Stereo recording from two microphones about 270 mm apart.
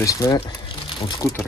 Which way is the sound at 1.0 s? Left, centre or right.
Centre.